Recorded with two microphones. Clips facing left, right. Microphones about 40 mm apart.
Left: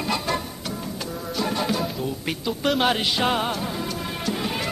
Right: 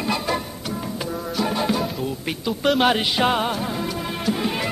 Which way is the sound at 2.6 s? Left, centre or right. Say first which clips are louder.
Right 3 dB; centre.